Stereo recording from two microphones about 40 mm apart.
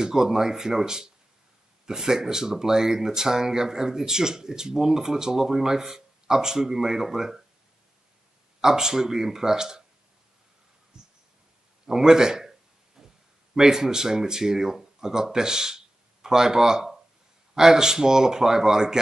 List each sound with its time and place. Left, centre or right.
0.0 s speech: centre
8.5 s speech: centre
10.9 s a sound: centre
13.6 s speech: centre